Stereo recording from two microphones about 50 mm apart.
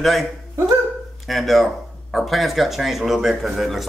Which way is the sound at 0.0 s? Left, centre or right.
Centre.